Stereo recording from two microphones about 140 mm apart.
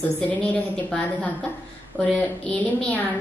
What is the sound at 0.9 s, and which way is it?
A woman's voice, 5° left (ahead or behind).